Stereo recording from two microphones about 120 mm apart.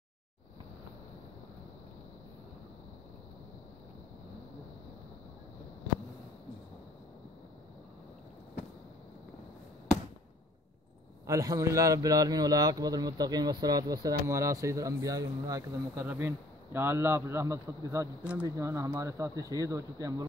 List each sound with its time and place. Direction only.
11.2 s a man's voice: 30° right (ahead or behind)